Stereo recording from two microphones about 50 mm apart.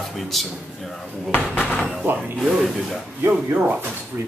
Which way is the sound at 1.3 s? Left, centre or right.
Left.